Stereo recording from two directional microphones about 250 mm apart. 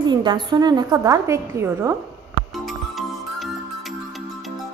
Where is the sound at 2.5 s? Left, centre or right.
Centre.